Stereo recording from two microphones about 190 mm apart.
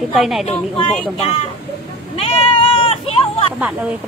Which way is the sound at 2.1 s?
30° left (ahead or behind).